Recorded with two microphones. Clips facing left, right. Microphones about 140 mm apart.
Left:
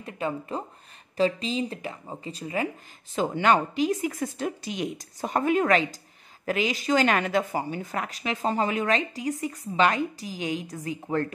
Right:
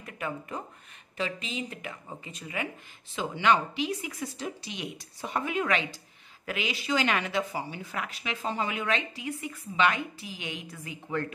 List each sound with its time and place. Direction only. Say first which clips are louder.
0.0 s speech: left 5 dB; 30° left (ahead or behind)
3.2 s a woman's voice: left 3 dB; 50° left (ahead or behind)